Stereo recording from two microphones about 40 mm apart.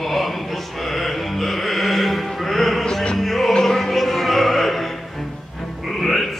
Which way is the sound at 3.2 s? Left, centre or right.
Centre.